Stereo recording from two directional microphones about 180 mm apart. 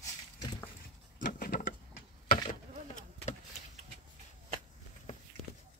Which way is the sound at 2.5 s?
45° left (ahead or behind).